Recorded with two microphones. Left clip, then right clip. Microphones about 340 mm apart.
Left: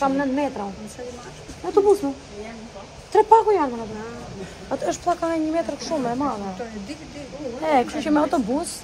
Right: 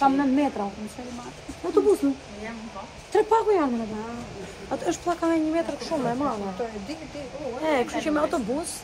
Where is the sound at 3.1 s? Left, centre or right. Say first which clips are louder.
Left 6 dB; centre.